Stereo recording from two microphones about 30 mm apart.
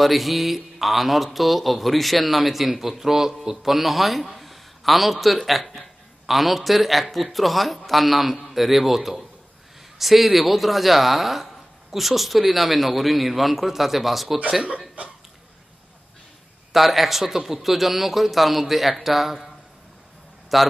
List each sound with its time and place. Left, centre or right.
0.0 s speech: centre
16.7 s speech: centre
20.5 s speech: centre